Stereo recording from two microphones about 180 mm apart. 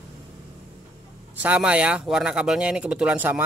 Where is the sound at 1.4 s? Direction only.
10° right (ahead or behind).